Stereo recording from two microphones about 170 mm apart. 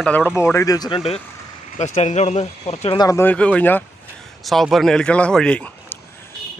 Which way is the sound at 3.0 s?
15° left (ahead or behind).